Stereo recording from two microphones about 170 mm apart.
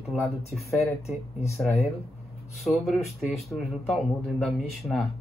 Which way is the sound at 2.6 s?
Centre (ahead or behind).